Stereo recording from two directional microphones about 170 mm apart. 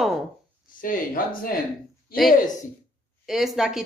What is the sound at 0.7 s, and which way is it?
Speech, 55° left (ahead or behind).